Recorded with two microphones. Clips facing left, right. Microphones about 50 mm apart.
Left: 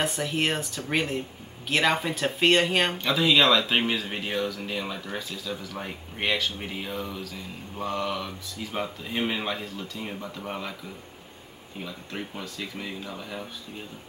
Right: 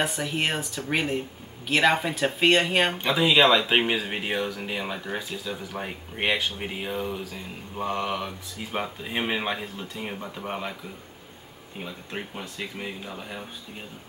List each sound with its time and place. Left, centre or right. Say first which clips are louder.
0.0 s speech: even; centre
3.0 s speech: right 2 dB; centre
11.8 s speech: right 1 dB; right